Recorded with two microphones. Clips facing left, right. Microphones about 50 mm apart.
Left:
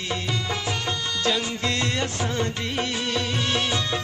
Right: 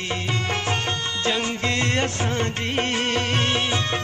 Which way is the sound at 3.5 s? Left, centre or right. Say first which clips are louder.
Right 1 dB; right.